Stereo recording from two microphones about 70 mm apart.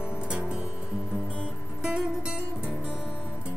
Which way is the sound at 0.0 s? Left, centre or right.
Centre.